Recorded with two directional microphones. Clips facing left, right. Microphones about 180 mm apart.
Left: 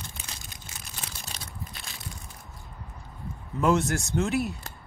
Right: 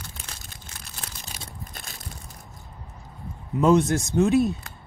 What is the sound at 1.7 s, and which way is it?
Crushing, 45° right (ahead or behind).